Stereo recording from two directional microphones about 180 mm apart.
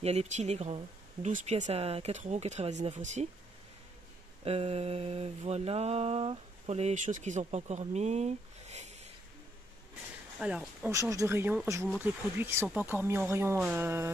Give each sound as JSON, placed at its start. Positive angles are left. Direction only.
{"t": 0.0, "sound": "mantra", "side_deg": -35}
{"t": 4.5, "sound": "mantra", "side_deg": -35}
{"t": 10.4, "sound": "speech", "side_deg": -5}
{"t": 10.9, "sound": "speech", "side_deg": -15}